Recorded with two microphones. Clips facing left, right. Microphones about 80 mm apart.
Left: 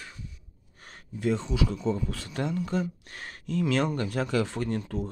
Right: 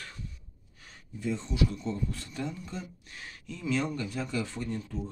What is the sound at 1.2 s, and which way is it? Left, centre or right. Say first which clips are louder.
Speech: left 3 dB; left.